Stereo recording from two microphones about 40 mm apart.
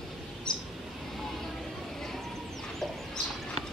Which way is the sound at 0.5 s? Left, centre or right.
Centre.